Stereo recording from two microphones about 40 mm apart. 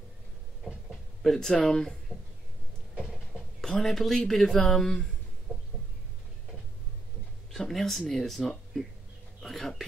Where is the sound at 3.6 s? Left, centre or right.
Centre.